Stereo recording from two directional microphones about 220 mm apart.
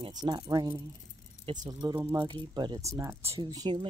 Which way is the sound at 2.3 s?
20° right (ahead or behind).